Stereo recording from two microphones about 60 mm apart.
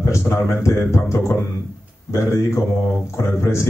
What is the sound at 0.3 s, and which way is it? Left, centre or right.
Speech, left.